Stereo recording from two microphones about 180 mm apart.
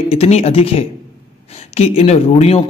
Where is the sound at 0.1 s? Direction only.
35° left (ahead or behind).